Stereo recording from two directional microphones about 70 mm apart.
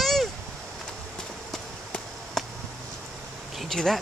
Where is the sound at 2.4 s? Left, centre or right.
Centre.